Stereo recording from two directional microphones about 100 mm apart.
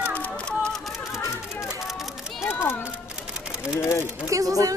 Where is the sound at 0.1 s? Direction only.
15° left (ahead or behind).